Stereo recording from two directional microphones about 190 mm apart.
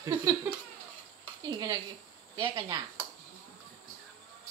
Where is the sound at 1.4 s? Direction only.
20° right (ahead or behind).